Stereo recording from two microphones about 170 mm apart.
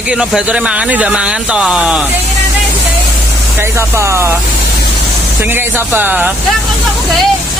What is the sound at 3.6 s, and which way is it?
Speech, 15° right (ahead or behind).